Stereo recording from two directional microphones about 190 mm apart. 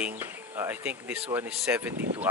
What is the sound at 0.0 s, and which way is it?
Speech, 10° right (ahead or behind).